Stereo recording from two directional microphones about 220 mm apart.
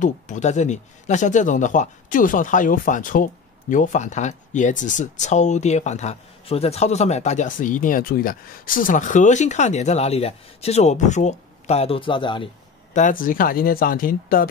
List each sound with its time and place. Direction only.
0.0 s speech: 35° left (ahead or behind)
12.9 s speech: 35° left (ahead or behind)